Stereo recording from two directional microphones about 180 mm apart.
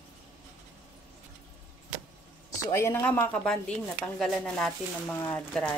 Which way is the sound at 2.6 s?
15° left (ahead or behind).